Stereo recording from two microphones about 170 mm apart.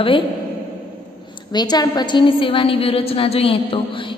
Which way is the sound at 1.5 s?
25° left (ahead or behind).